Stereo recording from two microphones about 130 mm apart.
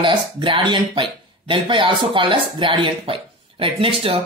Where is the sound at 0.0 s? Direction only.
40° right (ahead or behind).